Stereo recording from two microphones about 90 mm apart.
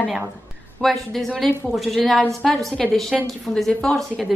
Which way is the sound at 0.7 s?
Centre (ahead or behind).